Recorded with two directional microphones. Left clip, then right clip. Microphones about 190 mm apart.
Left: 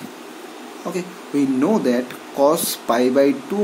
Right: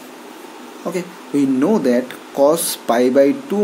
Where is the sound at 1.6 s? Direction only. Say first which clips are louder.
Right 3 dB; 20° right (ahead or behind).